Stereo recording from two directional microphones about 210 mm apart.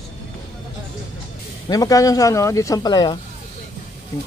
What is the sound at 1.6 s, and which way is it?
Speech, 15° left (ahead or behind).